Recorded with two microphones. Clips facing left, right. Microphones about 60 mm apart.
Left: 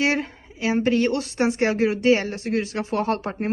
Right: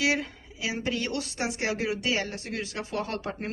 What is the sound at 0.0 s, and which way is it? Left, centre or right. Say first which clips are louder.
A woman's voice: left 4 dB; left.